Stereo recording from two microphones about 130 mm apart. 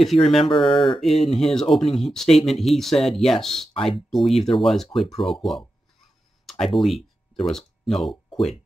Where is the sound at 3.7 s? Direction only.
45° left (ahead or behind).